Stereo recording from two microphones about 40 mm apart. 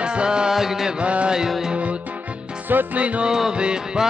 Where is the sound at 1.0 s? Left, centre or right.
Right.